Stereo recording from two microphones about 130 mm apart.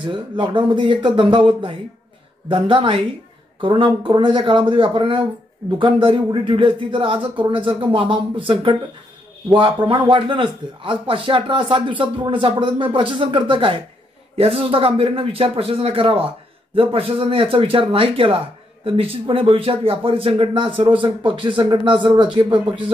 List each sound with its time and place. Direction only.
0.0 s a man's voice: 40° right (ahead or behind)